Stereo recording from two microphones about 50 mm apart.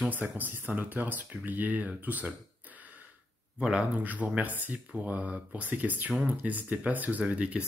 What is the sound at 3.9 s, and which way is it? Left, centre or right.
Speech, right.